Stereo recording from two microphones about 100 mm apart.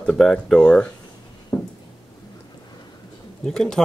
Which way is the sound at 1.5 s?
30° left (ahead or behind).